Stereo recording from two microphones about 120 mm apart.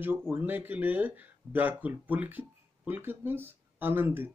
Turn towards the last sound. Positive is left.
turn(degrees=-15)  # may be behind; listen again after turning